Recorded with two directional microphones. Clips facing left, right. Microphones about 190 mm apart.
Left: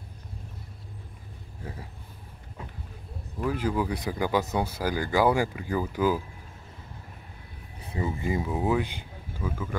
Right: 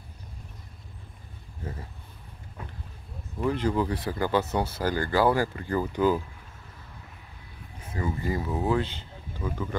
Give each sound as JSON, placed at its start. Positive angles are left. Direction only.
{"t": 1.6, "sound": "speech", "side_deg": 10}
{"t": 3.3, "sound": "speech", "side_deg": 5}
{"t": 8.0, "sound": "speech", "side_deg": 20}
{"t": 8.5, "sound": "speech", "side_deg": 10}